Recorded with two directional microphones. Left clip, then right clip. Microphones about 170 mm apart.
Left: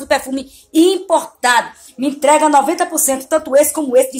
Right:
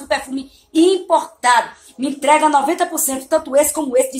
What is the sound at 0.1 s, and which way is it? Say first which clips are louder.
A woman's voice: left 4 dB; 50° left (ahead or behind).